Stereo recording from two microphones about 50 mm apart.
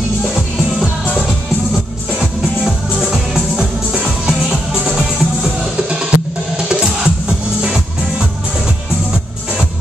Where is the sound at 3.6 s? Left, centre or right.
Right.